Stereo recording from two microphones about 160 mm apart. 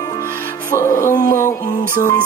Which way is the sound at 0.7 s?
15° left (ahead or behind).